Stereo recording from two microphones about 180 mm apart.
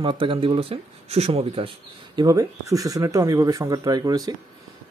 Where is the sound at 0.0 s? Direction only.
30° right (ahead or behind).